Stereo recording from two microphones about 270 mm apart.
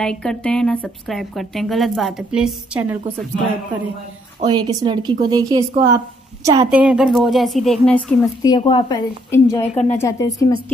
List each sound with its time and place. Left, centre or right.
0.0 s a woman's voice: centre
4.4 s a woman's voice: centre
8.4 s a woman's voice: centre